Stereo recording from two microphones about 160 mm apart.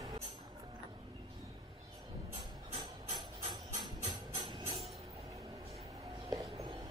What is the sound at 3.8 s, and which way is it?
Music, 25° right (ahead or behind).